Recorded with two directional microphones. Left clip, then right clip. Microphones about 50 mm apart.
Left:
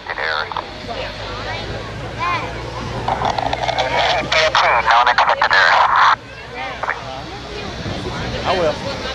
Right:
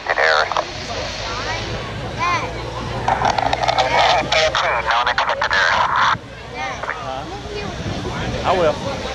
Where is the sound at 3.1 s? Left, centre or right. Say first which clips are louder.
Right 2 dB; right.